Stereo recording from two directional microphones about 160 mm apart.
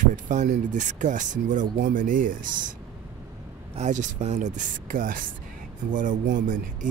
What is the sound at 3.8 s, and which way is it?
Speech, 50° right (ahead or behind).